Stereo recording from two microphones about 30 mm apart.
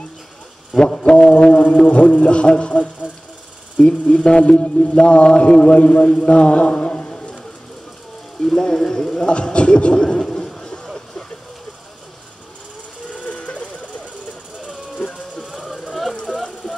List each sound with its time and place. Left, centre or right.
0.7 s a sound: left
1.5 s a man's voice: left
2.7 s speech: left
4.2 s a sound: left
5.4 s a man's voice: left
8.6 s speech: centre
9.3 s a man's voice: left
9.9 s bird: centre
13.2 s vehicle: left
15.4 s a sound: centre
16.3 s jackhammer: centre